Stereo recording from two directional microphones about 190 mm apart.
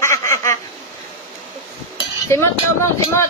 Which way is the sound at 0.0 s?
15° left (ahead or behind).